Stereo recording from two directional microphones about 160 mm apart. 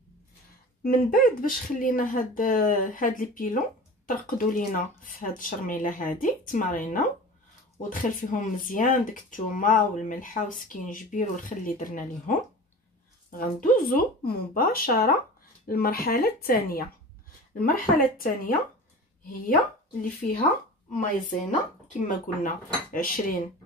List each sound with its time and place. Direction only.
0.8 s speech: 60° left (ahead or behind)
13.4 s speech: 60° left (ahead or behind)
20.0 s speech: 55° left (ahead or behind)